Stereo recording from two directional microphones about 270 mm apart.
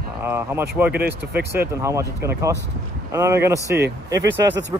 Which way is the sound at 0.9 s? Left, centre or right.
Right.